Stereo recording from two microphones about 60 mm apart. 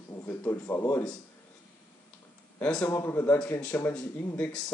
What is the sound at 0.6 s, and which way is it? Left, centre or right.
Speech, left.